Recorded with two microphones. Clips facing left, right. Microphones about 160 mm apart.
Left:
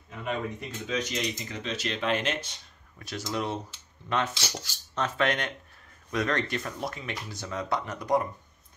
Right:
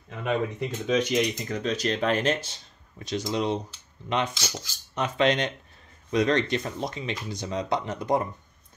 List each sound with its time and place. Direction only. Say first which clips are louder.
0.2 s speech: right 5 dB; 75° right (ahead or behind)
1.5 s speech: right 6 dB; 40° right (ahead or behind); by 3.6 s 20° right (ahead or behind)
4.4 s speech: right 1 dB; 5° left (ahead or behind)
4.9 s speech: right 4 dB; 15° right (ahead or behind)